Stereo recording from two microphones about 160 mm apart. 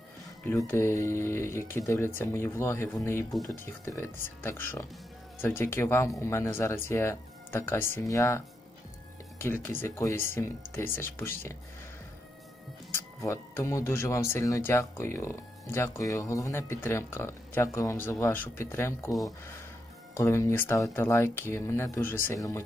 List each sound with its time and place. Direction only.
0.5 s speech: 15° left (ahead or behind)
9.4 s speech: 15° left (ahead or behind)
12.9 s speech: 15° left (ahead or behind)
20.2 s speech: 20° left (ahead or behind)